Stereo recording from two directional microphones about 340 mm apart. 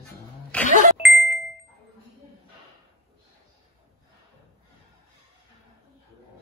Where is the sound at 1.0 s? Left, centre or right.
Centre.